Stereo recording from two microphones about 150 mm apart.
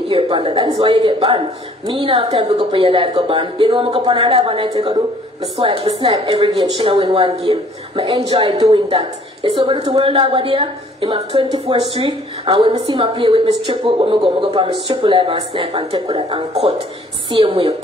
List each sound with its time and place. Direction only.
0.1 s a man's voice: 35° right (ahead or behind)